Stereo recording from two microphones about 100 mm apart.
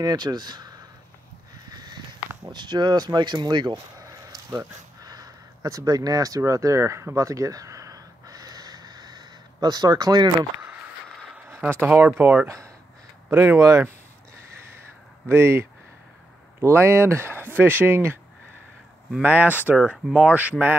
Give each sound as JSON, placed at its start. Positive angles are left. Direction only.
{"t": 0.0, "sound": "speech", "side_deg": -45}
{"t": 1.7, "sound": "a sound", "side_deg": -45}
{"t": 2.5, "sound": "speech", "side_deg": -45}
{"t": 4.0, "sound": "a sound", "side_deg": -35}
{"t": 11.8, "sound": "speech", "side_deg": -20}
{"t": 15.2, "sound": "speech", "side_deg": -25}
{"t": 16.6, "sound": "speech", "side_deg": -25}
{"t": 19.2, "sound": "speech", "side_deg": -15}